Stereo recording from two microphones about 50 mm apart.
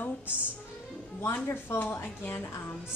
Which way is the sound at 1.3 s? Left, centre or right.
Left.